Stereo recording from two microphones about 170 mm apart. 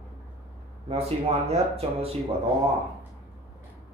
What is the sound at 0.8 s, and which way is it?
Speech, 35° right (ahead or behind).